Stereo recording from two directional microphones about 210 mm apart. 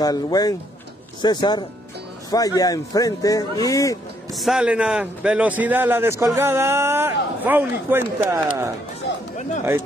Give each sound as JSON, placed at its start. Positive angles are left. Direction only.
{"t": 0.0, "sound": "speech", "side_deg": 20}
{"t": 4.3, "sound": "a man's voice", "side_deg": 0}
{"t": 9.1, "sound": "chatter", "side_deg": 55}